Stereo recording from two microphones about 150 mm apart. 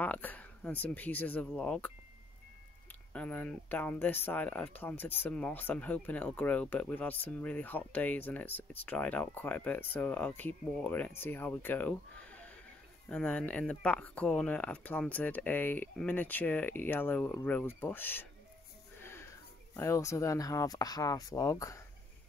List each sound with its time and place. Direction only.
0.0 s speech: 10° left (ahead or behind)
3.1 s speech: 10° left (ahead or behind)